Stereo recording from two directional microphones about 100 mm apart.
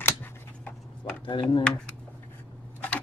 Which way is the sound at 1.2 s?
50° left (ahead or behind).